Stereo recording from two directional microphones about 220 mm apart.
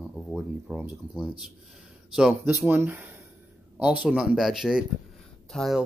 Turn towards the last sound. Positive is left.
turn(degrees=0)  # may be behind; listen again after turning